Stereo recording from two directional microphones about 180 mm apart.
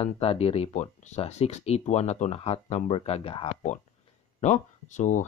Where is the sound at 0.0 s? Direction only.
35° left (ahead or behind).